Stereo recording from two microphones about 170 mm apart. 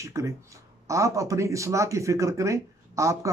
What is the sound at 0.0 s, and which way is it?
Speech, 15° right (ahead or behind).